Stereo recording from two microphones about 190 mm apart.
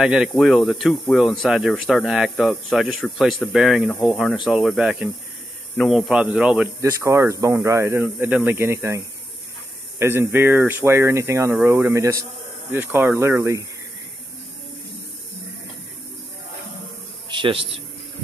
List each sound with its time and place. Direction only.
0.0 s speech: 5° right (ahead or behind)
6.8 s speech: 15° right (ahead or behind)
17.3 s a man's voice: 25° right (ahead or behind)